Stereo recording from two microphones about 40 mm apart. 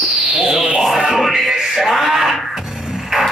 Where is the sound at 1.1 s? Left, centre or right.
Centre.